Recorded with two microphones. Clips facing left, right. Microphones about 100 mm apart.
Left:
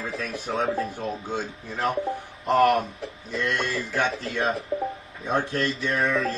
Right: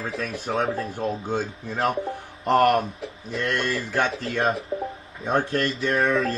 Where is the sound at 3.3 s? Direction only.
55° right (ahead or behind).